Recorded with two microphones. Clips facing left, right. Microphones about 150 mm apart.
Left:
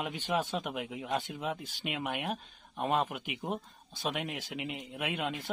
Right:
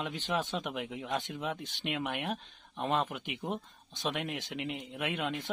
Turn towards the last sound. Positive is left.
turn(degrees=5)  # may be behind; listen again after turning